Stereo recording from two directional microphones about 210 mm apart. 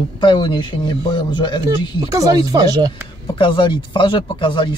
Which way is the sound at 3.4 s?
25° left (ahead or behind).